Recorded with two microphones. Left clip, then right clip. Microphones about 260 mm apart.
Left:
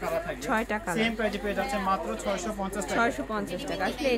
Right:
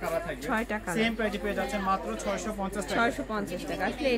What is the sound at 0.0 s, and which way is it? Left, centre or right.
A woman's voice, centre.